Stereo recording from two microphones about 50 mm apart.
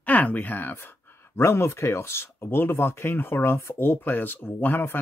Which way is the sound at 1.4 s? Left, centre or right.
Left.